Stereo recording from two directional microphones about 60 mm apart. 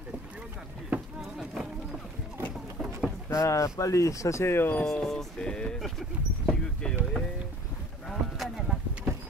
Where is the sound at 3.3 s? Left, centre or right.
Left.